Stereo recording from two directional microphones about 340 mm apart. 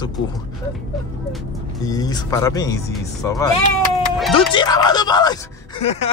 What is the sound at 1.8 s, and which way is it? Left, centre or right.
Speech, centre.